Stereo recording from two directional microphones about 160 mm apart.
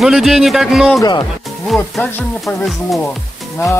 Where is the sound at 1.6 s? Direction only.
Centre (ahead or behind).